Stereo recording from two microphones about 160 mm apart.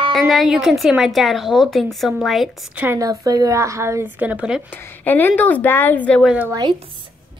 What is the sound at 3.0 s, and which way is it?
A woman's voice, 20° right (ahead or behind).